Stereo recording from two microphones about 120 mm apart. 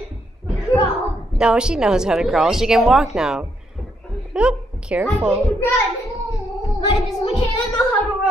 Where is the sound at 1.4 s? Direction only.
5° right (ahead or behind).